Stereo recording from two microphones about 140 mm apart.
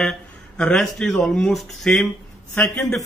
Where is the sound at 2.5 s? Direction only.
20° left (ahead or behind).